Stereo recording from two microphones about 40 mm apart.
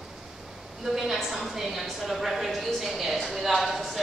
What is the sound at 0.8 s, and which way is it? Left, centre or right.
A woman's voice, centre.